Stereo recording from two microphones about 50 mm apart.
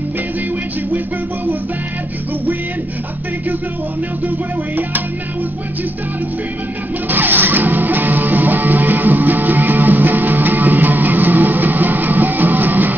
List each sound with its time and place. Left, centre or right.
0.9 s music: right
7.1 s music: right